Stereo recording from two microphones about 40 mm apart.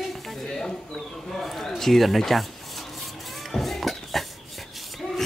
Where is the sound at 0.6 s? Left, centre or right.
Centre.